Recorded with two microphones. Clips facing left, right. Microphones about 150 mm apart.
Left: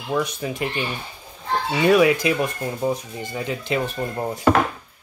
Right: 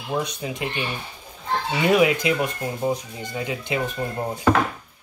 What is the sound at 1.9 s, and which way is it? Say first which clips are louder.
Speech: left 2 dB; 20° right (ahead or behind).